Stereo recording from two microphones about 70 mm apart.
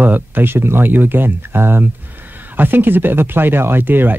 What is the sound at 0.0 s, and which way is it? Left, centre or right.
Speech, right.